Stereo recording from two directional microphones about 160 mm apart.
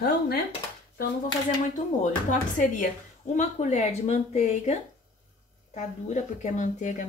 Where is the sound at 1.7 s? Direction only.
50° left (ahead or behind).